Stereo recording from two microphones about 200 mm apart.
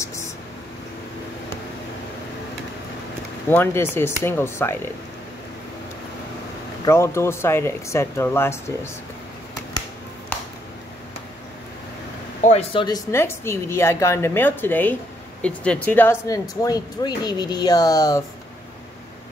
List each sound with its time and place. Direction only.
3.4 s speech: 10° left (ahead or behind)
6.8 s speech: 15° left (ahead or behind)
12.4 s speech: 35° left (ahead or behind); by 18.2 s 20° left (ahead or behind)